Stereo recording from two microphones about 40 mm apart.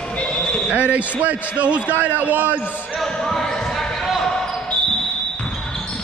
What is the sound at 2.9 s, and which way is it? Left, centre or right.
Basketball bounce, centre.